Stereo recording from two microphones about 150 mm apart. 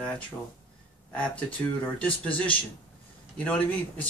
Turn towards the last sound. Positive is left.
turn(degrees=10)  # may be behind; listen again after turning